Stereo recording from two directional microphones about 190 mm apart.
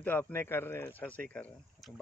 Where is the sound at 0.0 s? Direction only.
10° left (ahead or behind).